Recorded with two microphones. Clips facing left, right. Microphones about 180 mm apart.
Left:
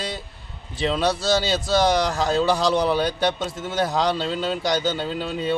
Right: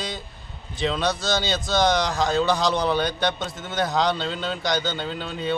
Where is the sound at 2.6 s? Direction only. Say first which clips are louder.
Left 3 dB; 30° left (ahead or behind).